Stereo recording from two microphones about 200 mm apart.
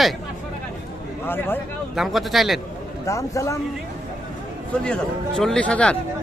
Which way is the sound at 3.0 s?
15° left (ahead or behind).